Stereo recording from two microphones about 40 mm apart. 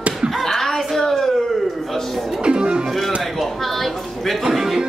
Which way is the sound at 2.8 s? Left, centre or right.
Centre.